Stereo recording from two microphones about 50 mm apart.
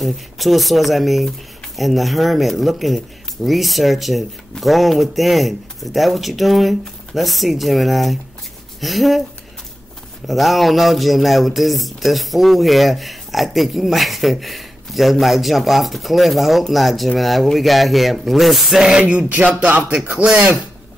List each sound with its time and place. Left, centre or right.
0.0 s speech: centre
10.2 s speech: centre
19.0 s speech: right